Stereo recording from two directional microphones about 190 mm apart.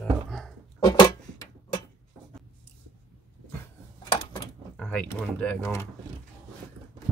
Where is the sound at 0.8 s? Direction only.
20° left (ahead or behind).